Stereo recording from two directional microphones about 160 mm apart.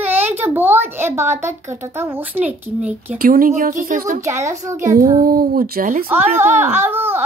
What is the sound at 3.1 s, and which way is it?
Speech, 60° right (ahead or behind).